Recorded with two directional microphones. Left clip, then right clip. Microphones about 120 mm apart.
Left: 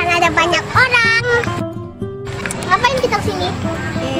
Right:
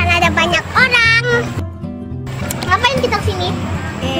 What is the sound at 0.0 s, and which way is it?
Music, 10° left (ahead or behind).